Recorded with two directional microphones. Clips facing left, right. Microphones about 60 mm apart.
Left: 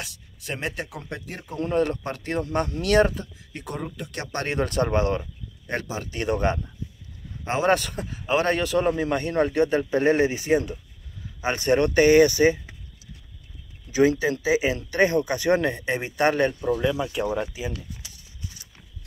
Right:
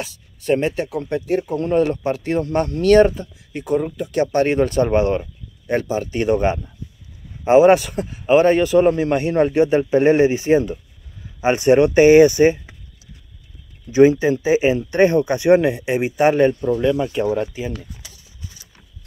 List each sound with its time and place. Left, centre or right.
0.0 s speech: centre
9.5 s speech: centre
11.4 s speech: centre
13.9 s speech: right
15.5 s speech: centre
16.6 s speech: centre
17.5 s speech: centre